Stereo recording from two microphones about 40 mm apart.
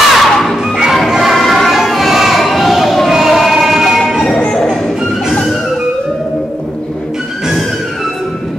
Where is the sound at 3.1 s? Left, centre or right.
Centre.